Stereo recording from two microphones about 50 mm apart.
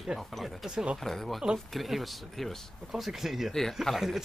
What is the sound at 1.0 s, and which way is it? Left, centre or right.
Speech, centre.